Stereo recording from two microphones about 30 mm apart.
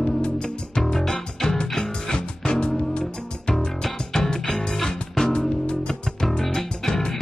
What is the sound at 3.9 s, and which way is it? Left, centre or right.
Music, left.